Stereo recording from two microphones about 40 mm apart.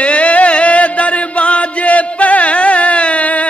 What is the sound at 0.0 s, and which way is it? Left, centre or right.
Music, left.